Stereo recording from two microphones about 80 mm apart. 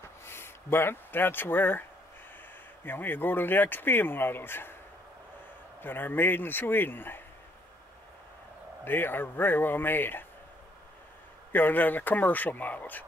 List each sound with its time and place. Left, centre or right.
0.2 s speech: left
5.8 s speech: left
8.8 s speech: left
11.5 s speech: left